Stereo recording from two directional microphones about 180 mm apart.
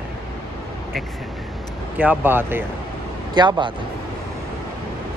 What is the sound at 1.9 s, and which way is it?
Speech, 10° right (ahead or behind).